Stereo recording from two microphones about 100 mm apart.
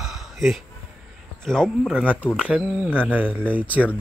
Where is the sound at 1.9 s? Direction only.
15° right (ahead or behind).